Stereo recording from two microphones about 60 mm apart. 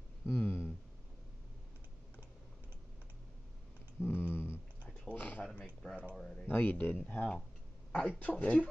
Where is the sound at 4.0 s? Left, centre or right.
Left.